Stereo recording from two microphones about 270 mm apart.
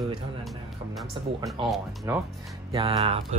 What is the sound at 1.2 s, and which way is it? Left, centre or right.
Speech, centre.